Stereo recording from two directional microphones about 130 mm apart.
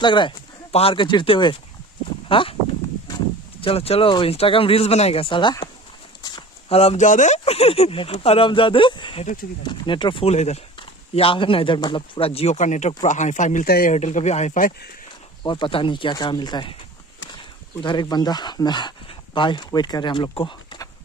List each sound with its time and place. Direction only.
0.0 s speech: 40° left (ahead or behind)
3.6 s speech: 50° left (ahead or behind); by 5.7 s 35° left (ahead or behind)
6.7 s speech: 50° left (ahead or behind)
7.0 s speech: 70° left (ahead or behind)
7.3 s speech: 50° left (ahead or behind)
9.2 s speech: 90° left
9.6 s speech: 35° left (ahead or behind)
10.2 s speech: 60° left (ahead or behind)
10.8 s speech: 45° left (ahead or behind)
12.5 s speech: 65° left (ahead or behind)
15.4 s speech: 40° left (ahead or behind)
17.8 s speech: 35° left (ahead or behind)